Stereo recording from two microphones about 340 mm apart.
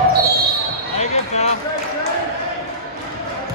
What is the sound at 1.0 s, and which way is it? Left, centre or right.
Basketball bounce, centre.